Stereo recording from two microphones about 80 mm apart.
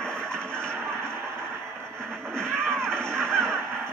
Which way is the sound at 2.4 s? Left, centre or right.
Centre.